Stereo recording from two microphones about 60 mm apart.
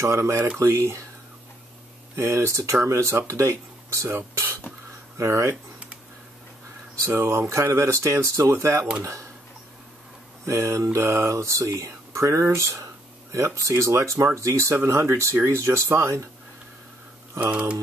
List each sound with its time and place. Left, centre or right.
0.0 s speech: right
2.2 s speech: right
4.0 s speech: right
7.1 s speech: right
10.4 s speech: right
17.5 s speech: right